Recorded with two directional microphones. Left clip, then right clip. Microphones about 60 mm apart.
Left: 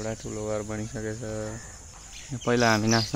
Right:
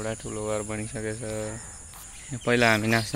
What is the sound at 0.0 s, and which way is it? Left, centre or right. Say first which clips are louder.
Speech: right 1 dB; centre.